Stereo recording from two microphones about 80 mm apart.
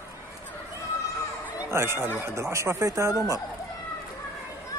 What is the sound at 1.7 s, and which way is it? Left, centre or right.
Speech, right.